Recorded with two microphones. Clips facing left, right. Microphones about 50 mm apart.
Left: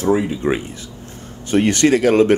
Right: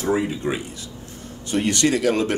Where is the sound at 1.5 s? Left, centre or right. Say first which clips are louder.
Left 6 dB; left.